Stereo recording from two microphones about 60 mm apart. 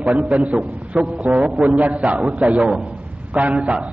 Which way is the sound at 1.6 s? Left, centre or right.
Centre.